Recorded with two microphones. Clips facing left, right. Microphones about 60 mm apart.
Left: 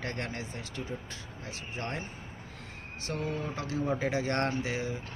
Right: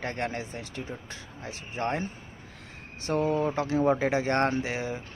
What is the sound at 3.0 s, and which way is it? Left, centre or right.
Speech, right.